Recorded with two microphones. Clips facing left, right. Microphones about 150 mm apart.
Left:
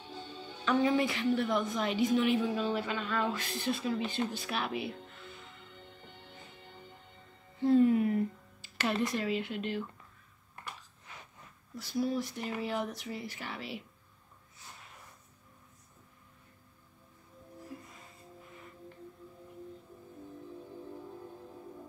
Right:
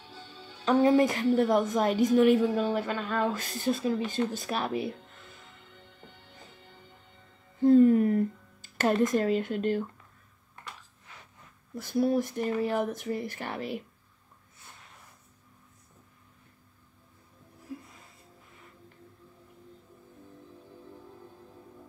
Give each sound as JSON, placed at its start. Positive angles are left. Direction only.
{"t": 0.0, "sound": "music", "side_deg": 20}
{"t": 0.7, "sound": "a woman's voice", "side_deg": -40}
{"t": 7.6, "sound": "a sound", "side_deg": -45}
{"t": 11.7, "sound": "a woman's voice", "side_deg": -55}